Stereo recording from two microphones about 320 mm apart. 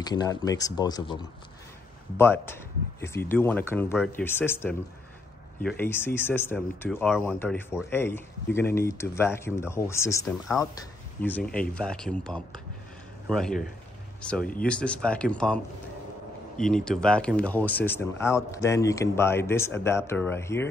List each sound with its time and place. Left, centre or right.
0.0 s speech: centre
2.4 s speech: centre
14.4 s speech: left
14.7 s speech: centre